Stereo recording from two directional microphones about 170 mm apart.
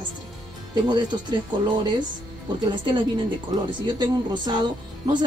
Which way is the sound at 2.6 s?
25° right (ahead or behind).